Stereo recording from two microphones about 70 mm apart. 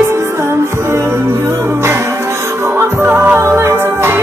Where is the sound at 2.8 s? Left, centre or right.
Right.